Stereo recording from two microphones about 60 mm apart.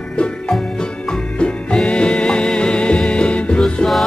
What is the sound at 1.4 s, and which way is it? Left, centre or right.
Music, centre.